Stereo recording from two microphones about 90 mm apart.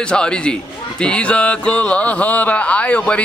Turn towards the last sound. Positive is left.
turn(degrees=15)  # may be behind; listen again after turning